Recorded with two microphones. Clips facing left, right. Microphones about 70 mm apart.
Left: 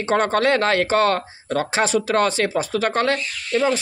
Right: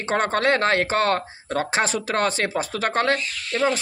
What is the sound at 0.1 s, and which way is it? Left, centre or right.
Speech, right.